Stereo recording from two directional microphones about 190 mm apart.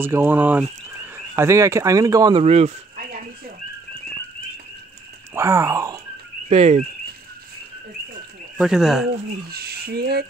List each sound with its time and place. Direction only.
0.0 s speech: 10° right (ahead or behind)
2.4 s speech: 35° right (ahead or behind)
3.1 s a sound: 50° right (ahead or behind)
5.3 s speech: 15° right (ahead or behind)
6.5 s a sound: 35° right (ahead or behind)
8.5 s speech: 5° right (ahead or behind)
9.5 s speech: 55° right (ahead or behind)